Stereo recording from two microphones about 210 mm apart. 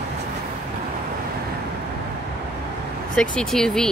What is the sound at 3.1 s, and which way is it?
Speech, 5° left (ahead or behind).